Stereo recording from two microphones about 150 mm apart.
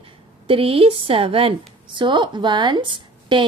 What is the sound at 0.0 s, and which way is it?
A woman's voice, 35° right (ahead or behind).